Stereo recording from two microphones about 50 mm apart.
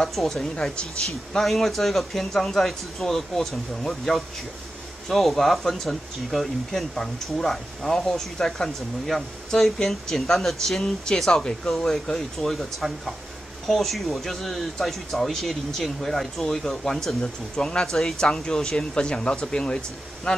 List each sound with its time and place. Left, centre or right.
0.0 s speech: centre; by 20.4 s left